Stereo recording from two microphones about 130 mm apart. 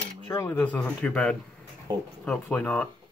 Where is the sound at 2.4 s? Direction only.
15° left (ahead or behind).